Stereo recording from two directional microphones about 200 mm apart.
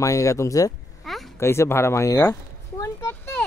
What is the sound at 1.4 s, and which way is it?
Speech, 15° left (ahead or behind).